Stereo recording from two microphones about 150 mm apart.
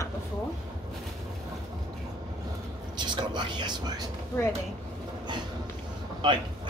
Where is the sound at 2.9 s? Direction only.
30° right (ahead or behind).